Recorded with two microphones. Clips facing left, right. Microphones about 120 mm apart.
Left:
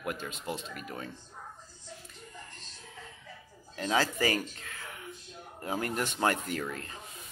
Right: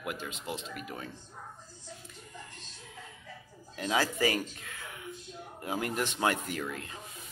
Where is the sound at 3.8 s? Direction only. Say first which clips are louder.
Even; 15° right (ahead or behind).